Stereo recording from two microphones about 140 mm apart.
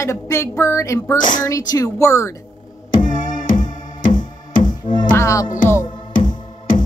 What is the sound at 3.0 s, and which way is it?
Music, 70° left (ahead or behind).